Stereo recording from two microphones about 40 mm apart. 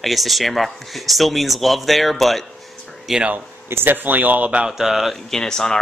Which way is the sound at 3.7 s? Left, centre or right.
Right.